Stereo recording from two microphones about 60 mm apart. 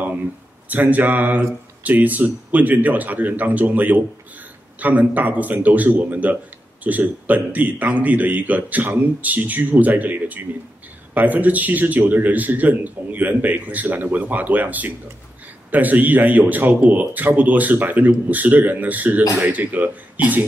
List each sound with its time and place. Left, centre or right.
0.7 s a man's voice: right